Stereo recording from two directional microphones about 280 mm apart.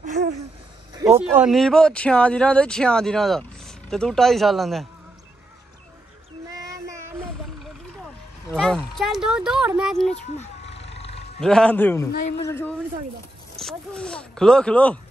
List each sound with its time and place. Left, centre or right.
0.0 s a sound: right
0.9 s speech: centre
6.5 s child singing: centre
8.0 s speech: centre
10.1 s cat: left
11.4 s a man's voice: centre